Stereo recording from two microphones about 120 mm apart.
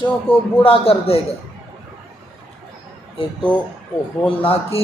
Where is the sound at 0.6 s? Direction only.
50° left (ahead or behind).